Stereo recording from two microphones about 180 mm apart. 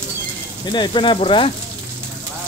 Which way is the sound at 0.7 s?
25° left (ahead or behind).